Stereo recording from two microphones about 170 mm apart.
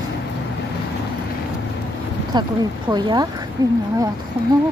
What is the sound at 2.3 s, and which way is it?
Speech, 25° right (ahead or behind).